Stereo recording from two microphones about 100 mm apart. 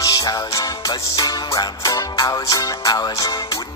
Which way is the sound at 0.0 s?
35° left (ahead or behind).